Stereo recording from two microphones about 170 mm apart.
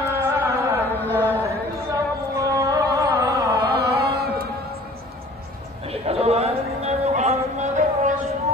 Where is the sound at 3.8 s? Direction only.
70° right (ahead or behind).